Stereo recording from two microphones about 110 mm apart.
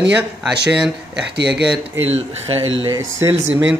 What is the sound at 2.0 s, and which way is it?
Speech, 65° right (ahead or behind).